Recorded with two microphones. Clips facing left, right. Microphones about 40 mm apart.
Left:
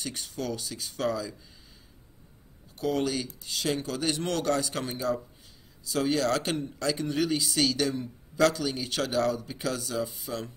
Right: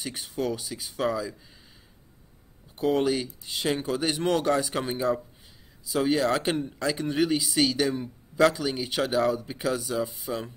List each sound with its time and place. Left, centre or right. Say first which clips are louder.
0.0 s a man's voice: right 4 dB; centre
2.8 s a man's voice: right 4 dB; right